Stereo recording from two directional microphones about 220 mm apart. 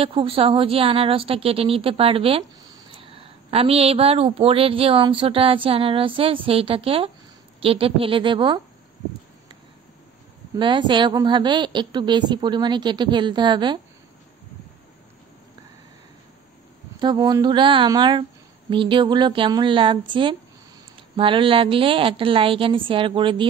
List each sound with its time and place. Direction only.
0.0 s speech: 25° right (ahead or behind)
10.6 s speech: 20° right (ahead or behind)
17.0 s speech: 20° right (ahead or behind)